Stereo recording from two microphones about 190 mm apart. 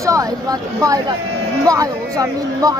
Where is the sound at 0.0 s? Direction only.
15° right (ahead or behind).